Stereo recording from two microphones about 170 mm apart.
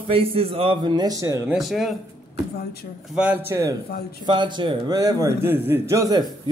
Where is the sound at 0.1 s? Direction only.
35° right (ahead or behind).